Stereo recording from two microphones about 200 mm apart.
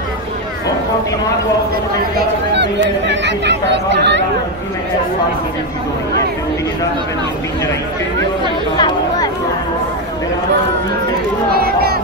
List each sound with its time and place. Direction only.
2.1 s a sound: 60° right (ahead or behind)
3.1 s speech: 60° right (ahead or behind)
8.7 s chatter: 20° left (ahead or behind)
11.5 s speech: 50° right (ahead or behind)